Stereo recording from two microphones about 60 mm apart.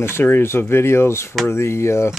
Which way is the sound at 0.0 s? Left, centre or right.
Left.